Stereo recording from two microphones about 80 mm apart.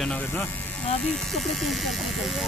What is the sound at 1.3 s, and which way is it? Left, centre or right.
Speech, centre.